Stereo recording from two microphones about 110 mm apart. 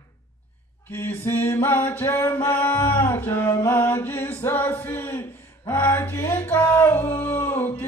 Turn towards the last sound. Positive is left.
turn(degrees=20)  # may be behind; listen again after turning